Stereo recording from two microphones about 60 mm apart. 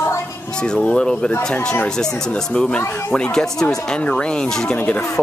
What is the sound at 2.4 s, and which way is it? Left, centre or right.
Speech, centre.